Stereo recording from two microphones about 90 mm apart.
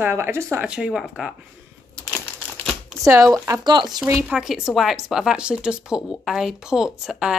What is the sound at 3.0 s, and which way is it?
Speech, 35° right (ahead or behind).